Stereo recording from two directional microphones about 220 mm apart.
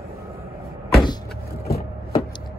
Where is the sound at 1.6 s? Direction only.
45° left (ahead or behind).